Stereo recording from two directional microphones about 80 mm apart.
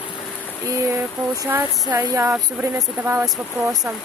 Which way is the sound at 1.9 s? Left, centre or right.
Right.